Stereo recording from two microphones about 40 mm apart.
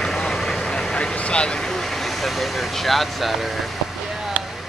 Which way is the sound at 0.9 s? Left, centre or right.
Left.